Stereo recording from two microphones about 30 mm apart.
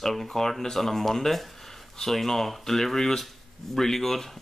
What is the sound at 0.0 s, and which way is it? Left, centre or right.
Speech, centre.